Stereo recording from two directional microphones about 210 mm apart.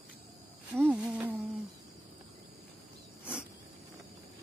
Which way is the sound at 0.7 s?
10° right (ahead or behind).